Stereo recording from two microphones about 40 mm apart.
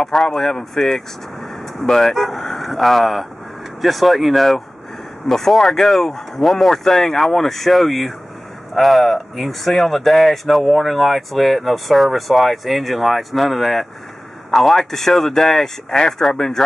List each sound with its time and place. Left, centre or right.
0.0 s speech: centre